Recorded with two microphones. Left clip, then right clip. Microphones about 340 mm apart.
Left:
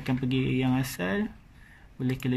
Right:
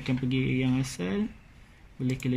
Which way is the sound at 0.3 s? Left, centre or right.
Left.